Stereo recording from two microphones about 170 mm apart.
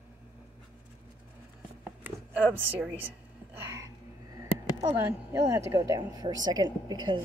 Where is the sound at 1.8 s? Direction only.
10° right (ahead or behind).